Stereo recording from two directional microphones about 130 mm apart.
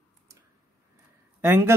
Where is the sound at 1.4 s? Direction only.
15° right (ahead or behind).